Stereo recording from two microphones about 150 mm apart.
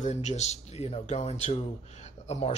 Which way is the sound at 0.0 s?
50° left (ahead or behind).